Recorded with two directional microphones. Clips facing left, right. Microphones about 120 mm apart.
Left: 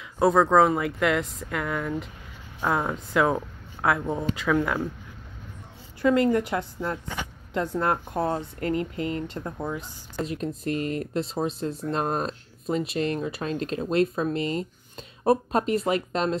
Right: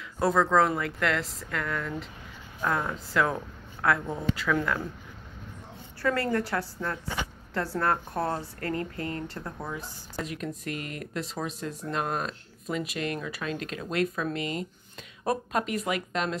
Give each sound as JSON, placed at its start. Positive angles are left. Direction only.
{"t": 0.2, "sound": "speech", "side_deg": 15}
{"t": 3.2, "sound": "speech", "side_deg": 10}
{"t": 6.0, "sound": "speech", "side_deg": 20}